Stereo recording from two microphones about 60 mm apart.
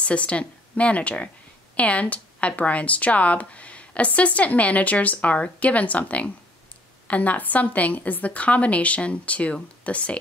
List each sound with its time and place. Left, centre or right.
0.0 s a woman's voice: left